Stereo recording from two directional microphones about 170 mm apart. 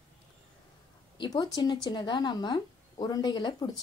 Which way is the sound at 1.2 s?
25° left (ahead or behind).